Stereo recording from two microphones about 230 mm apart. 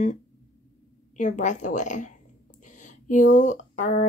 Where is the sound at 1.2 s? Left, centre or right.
Left.